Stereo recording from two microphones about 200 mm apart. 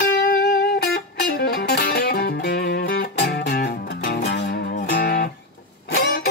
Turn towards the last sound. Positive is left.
turn(degrees=50)  # may be behind; listen again after turning